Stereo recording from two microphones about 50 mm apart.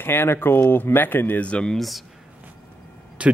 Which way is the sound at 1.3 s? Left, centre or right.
Left.